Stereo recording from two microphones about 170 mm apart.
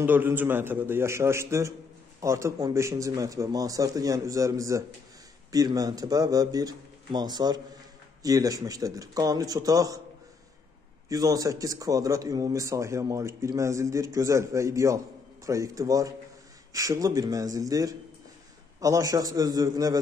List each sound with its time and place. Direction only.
0.0 s a man's voice: 10° right (ahead or behind)
11.1 s speech: 20° right (ahead or behind)